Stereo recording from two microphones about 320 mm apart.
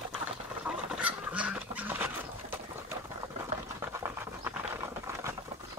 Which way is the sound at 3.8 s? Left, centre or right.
Centre.